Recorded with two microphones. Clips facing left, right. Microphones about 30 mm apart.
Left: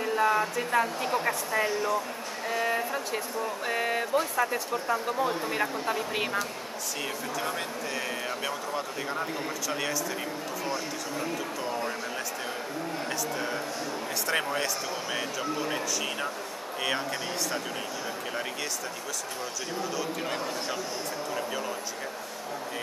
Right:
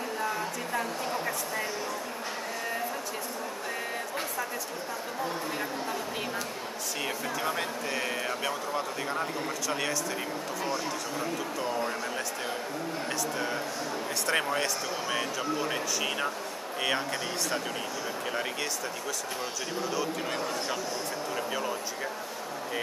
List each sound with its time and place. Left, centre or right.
0.0 s speech: left
1.7 s speech: centre
3.7 s speech: left
7.3 s speech: centre
14.2 s speech: centre
19.8 s speech: centre